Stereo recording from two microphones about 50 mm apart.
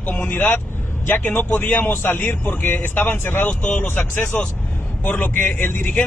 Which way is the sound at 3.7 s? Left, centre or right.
Left.